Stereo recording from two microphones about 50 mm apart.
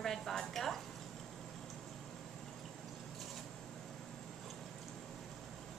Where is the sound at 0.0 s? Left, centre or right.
Centre.